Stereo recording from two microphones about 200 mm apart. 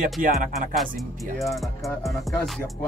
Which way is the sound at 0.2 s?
40° right (ahead or behind).